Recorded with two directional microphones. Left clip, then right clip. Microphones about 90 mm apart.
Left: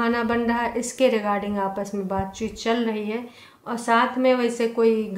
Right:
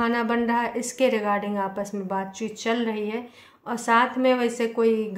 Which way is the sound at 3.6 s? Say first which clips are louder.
Even; 40° right (ahead or behind).